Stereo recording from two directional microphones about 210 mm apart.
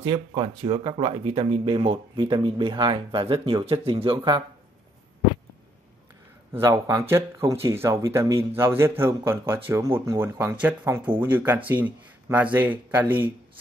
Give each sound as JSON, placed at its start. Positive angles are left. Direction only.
{"t": 0.0, "sound": "speech", "side_deg": -25}
{"t": 6.5, "sound": "speech", "side_deg": -15}